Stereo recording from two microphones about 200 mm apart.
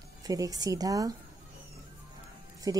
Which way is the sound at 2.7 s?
20° right (ahead or behind).